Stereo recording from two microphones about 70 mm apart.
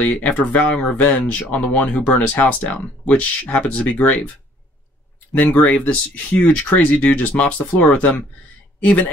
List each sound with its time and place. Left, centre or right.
0.0 s speech: left
5.4 s speech: left